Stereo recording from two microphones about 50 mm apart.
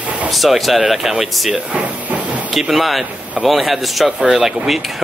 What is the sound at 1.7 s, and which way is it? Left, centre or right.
Speech, right.